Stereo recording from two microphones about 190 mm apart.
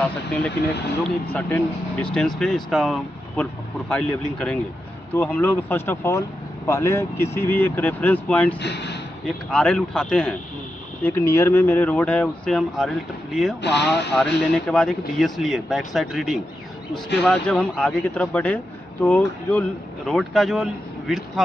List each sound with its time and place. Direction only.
1.3 s speech: 5° left (ahead or behind)
8.5 s speech: 65° left (ahead or behind)
9.2 s speech: 5° left (ahead or behind)
13.6 s speech: 65° left (ahead or behind)
13.8 s speech: 5° left (ahead or behind)